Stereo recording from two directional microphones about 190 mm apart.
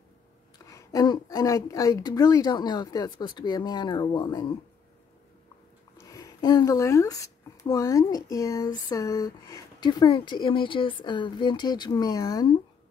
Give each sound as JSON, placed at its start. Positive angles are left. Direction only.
{"t": 0.7, "sound": "speech", "side_deg": 20}
{"t": 5.9, "sound": "speech", "side_deg": 15}